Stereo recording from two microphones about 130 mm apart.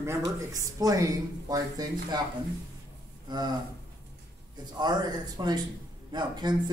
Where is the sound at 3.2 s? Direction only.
35° right (ahead or behind).